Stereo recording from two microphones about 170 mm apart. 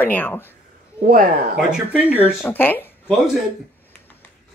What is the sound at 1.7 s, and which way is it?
Speech, 10° right (ahead or behind).